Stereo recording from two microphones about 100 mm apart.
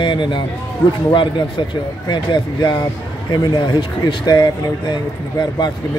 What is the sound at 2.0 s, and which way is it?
Speech, 45° left (ahead or behind).